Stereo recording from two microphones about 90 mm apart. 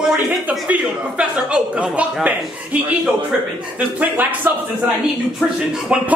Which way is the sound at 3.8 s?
20° right (ahead or behind).